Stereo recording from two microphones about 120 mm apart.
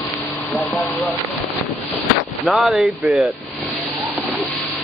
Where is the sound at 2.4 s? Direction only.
5° right (ahead or behind).